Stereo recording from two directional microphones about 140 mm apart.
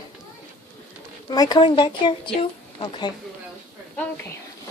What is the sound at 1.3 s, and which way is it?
Speech, 25° left (ahead or behind).